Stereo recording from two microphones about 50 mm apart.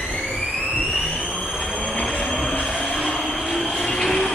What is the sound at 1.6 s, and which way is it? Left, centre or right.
Train, centre.